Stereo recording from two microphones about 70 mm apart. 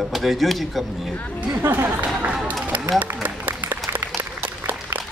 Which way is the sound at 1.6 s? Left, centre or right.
Right.